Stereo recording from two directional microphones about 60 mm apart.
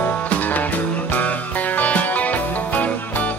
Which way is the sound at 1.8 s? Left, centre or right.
Left.